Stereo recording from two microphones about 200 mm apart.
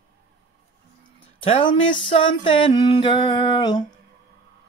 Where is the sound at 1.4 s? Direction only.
30° left (ahead or behind).